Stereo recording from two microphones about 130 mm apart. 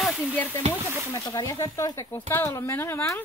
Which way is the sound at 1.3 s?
25° left (ahead or behind).